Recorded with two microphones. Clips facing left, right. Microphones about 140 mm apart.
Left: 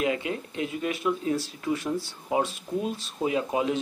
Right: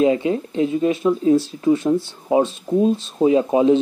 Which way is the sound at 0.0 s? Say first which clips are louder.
Right 10 dB; 30° right (ahead or behind).